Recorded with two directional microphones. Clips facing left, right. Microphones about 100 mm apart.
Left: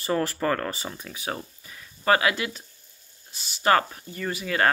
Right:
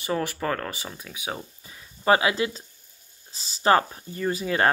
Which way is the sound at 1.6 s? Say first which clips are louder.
Left 1 dB; 20° right (ahead or behind).